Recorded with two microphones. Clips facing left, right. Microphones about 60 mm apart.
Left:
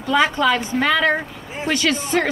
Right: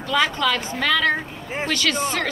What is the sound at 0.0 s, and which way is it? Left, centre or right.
A man's voice, left.